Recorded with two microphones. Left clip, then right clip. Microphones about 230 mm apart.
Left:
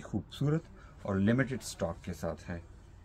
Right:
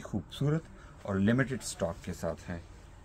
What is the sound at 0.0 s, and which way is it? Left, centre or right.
Speech, centre.